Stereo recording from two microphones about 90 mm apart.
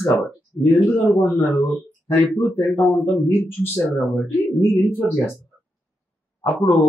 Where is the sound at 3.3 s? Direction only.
25° left (ahead or behind).